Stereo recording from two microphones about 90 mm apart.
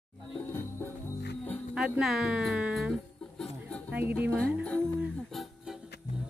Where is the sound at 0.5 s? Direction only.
25° left (ahead or behind).